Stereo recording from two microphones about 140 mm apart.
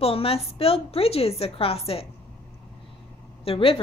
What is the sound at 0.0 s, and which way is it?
A woman's voice, 45° left (ahead or behind).